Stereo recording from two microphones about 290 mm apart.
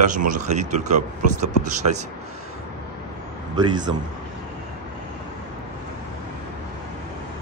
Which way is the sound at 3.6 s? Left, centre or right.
Centre.